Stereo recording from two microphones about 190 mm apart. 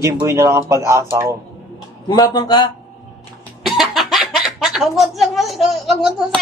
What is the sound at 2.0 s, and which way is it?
Speech, 20° left (ahead or behind).